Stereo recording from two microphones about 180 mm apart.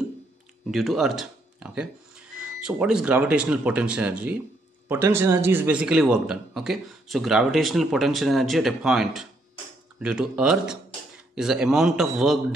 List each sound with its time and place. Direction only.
0.7 s speech: centre (ahead or behind)